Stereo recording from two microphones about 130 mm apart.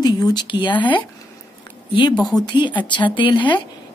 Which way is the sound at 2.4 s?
35° left (ahead or behind).